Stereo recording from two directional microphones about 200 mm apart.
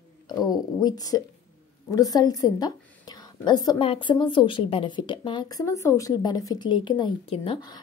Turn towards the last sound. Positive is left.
turn(degrees=25)  # may be behind; listen again after turning